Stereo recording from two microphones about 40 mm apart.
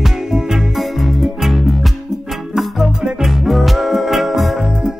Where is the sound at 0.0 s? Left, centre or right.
Centre.